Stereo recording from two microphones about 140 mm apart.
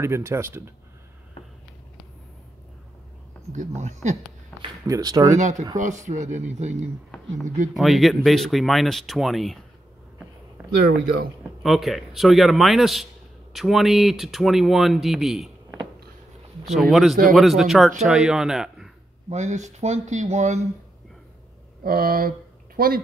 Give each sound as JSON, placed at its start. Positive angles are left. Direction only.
{"t": 0.0, "sound": "speech", "side_deg": -20}
{"t": 3.5, "sound": "speech", "side_deg": -55}
{"t": 4.5, "sound": "a sound", "side_deg": 10}
{"t": 4.8, "sound": "speech", "side_deg": -25}
{"t": 5.8, "sound": "speech", "side_deg": -60}
{"t": 7.7, "sound": "a man's voice", "side_deg": 0}
{"t": 11.6, "sound": "a man's voice", "side_deg": 0}
{"t": 16.7, "sound": "a man's voice", "side_deg": 0}
{"t": 19.2, "sound": "speech", "side_deg": -55}
{"t": 21.8, "sound": "speech", "side_deg": -90}